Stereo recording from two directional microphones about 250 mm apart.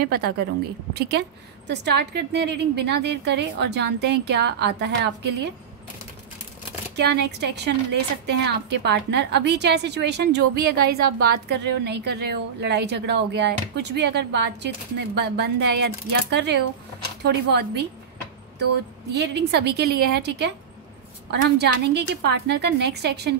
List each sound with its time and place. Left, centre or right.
0.0 s a woman's voice: right
7.0 s a woman's voice: right
19.1 s a woman's voice: right